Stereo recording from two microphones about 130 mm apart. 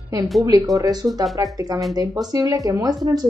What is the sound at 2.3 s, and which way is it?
Speech, 25° right (ahead or behind).